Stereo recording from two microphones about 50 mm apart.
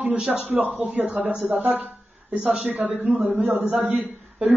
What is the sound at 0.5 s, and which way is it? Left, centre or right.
A man's voice, right.